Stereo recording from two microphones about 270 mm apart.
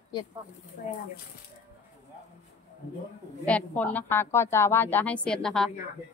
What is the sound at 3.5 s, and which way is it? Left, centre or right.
A woman's voice, centre.